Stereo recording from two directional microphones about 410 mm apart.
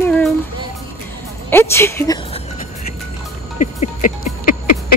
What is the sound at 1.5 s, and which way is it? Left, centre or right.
Speech, centre.